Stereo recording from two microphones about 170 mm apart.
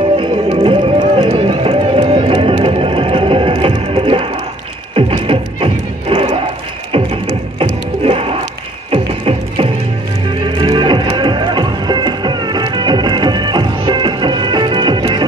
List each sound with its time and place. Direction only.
0.2 s music: 30° right (ahead or behind)
7.5 s music: 35° right (ahead or behind)